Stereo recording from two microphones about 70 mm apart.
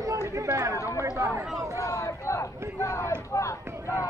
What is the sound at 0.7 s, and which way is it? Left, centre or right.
Speech, left.